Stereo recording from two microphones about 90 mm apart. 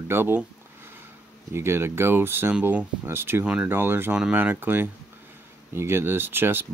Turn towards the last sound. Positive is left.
turn(degrees=-25)  # may be behind; listen again after turning